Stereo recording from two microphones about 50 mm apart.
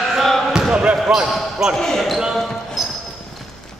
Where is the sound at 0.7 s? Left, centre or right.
Centre.